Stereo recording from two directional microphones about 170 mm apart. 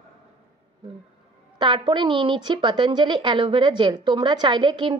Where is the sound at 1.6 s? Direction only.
30° right (ahead or behind).